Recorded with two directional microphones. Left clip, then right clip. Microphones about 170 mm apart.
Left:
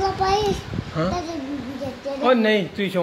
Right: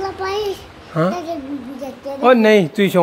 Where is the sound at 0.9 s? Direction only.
40° right (ahead or behind).